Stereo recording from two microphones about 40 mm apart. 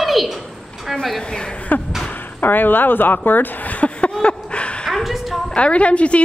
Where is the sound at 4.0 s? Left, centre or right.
Left.